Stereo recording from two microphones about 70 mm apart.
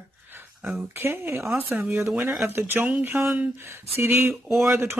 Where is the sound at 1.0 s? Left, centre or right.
Right.